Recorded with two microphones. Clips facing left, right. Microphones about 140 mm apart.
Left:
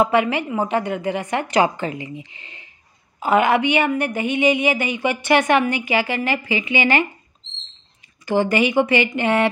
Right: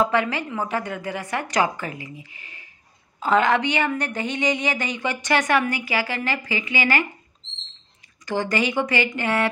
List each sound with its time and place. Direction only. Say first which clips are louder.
0.0 s a woman's voice: left 4 dB; 15° left (ahead or behind)
8.3 s a woman's voice: left 5 dB; 15° left (ahead or behind)